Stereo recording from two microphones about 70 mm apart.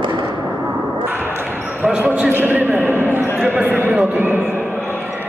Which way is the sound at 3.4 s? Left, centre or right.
Right.